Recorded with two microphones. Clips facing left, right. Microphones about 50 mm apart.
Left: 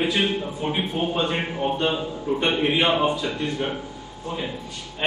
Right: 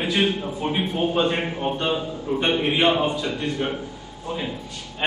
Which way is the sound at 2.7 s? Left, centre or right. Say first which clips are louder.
Right 3 dB; centre.